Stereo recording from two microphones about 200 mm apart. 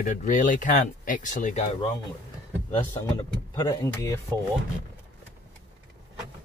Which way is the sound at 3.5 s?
15° left (ahead or behind).